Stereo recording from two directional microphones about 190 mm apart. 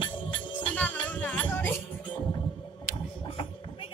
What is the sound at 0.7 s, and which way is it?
Music, 5° left (ahead or behind).